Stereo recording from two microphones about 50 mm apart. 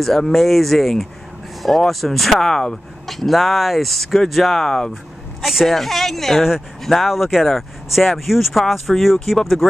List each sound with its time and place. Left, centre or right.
0.0 s speech: centre
5.4 s speech: centre